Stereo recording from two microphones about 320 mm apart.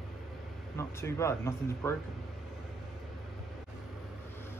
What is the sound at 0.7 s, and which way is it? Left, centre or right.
Speech, centre.